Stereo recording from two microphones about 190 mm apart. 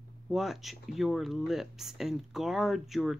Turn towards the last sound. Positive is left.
turn(degrees=0)  # may be behind; listen again after turning